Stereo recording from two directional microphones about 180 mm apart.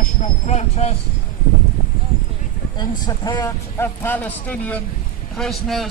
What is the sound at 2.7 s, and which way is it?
A man's voice, 20° left (ahead or behind).